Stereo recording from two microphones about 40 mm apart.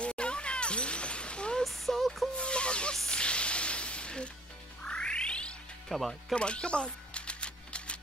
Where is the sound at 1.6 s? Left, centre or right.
Centre.